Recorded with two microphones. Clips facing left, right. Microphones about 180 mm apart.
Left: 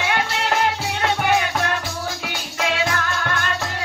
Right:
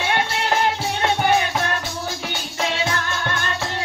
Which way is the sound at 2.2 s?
25° right (ahead or behind).